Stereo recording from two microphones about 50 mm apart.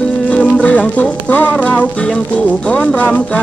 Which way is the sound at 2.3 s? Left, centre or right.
Left.